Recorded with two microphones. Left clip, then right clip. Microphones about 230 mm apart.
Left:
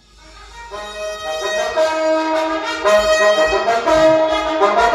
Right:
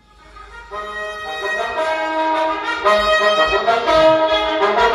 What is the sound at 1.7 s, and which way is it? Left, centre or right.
Music, left.